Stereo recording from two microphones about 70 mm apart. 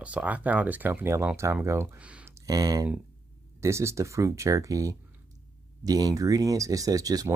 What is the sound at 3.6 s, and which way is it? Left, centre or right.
Speech, right.